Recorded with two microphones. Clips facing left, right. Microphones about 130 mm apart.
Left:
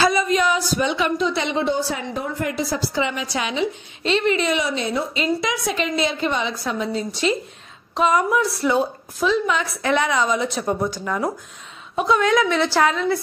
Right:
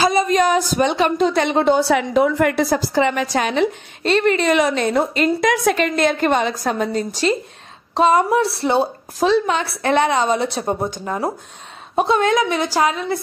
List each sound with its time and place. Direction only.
0.1 s a woman's voice: 40° right (ahead or behind)
7.9 s a woman's voice: 30° right (ahead or behind)
9.6 s a woman's voice: 60° right (ahead or behind)
9.8 s a woman's voice: 30° right (ahead or behind); by 13.0 s 15° right (ahead or behind)